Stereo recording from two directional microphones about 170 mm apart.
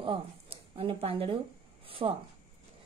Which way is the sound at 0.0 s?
30° right (ahead or behind).